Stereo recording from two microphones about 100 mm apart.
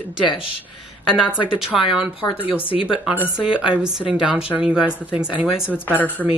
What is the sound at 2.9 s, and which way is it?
A woman's voice, 10° right (ahead or behind).